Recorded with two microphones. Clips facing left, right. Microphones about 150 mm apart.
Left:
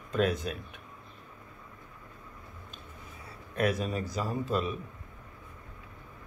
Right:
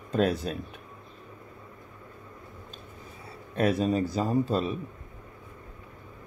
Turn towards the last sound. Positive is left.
turn(degrees=-30)  # may be behind; listen again after turning